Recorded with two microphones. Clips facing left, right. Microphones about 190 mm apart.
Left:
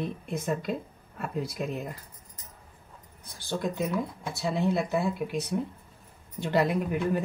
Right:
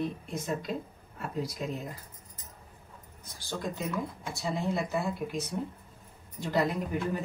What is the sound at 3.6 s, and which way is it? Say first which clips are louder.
Speech: left 4 dB; 65° left (ahead or behind).